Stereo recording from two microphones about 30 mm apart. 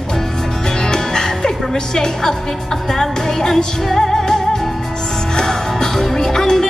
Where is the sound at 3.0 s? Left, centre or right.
Centre.